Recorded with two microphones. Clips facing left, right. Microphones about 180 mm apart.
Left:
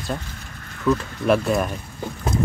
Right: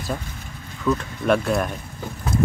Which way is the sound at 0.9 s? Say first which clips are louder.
Left 1 dB; 5° left (ahead or behind).